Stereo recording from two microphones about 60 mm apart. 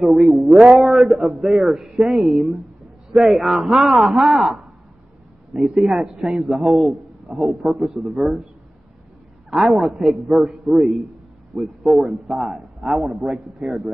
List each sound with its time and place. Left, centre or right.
0.0 s a man's voice: centre
5.5 s a man's voice: centre
9.5 s a man's voice: centre